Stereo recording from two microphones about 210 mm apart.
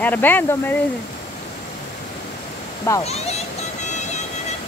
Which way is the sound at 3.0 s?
30° left (ahead or behind).